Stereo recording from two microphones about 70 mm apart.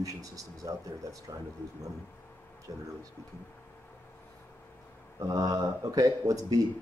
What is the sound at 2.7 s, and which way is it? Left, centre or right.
Speech, right.